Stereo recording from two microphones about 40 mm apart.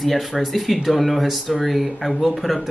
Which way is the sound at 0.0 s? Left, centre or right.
Centre.